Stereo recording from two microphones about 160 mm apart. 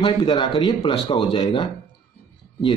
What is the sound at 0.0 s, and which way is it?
Speech, 30° left (ahead or behind).